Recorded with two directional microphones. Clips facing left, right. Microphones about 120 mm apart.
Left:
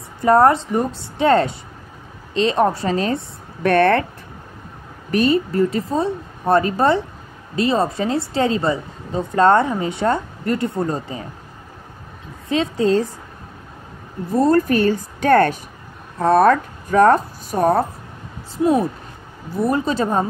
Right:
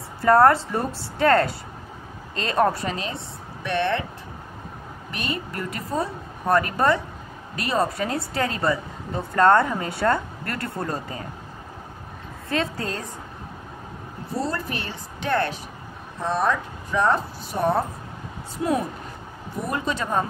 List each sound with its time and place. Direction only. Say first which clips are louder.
0.2 s a woman's voice: left 2 dB; 20° left (ahead or behind)
3.6 s speech: left 9 dB; 50° left (ahead or behind)
5.1 s a woman's voice: left 14 dB; 35° left (ahead or behind)
12.4 s a woman's voice: left 9 dB; 20° left (ahead or behind)
14.3 s speech: left 12 dB; 50° left (ahead or behind)
16.2 s speech: left 10 dB; 55° left (ahead or behind)
19.6 s a woman's voice: left 8 dB; 30° left (ahead or behind)